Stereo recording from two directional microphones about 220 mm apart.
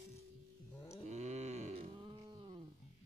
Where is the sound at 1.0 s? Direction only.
30° right (ahead or behind).